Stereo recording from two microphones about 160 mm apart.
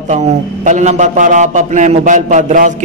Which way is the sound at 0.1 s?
45° right (ahead or behind).